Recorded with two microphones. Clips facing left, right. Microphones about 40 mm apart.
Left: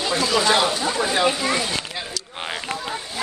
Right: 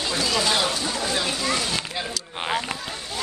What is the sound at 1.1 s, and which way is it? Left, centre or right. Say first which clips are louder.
Speech: left 4 dB; left.